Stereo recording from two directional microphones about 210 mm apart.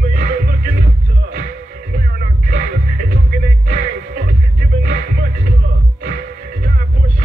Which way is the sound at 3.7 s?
40° right (ahead or behind).